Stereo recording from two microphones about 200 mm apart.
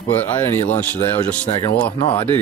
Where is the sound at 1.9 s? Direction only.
30° left (ahead or behind).